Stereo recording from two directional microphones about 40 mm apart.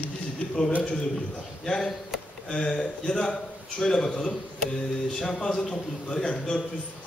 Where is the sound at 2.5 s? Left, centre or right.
Centre.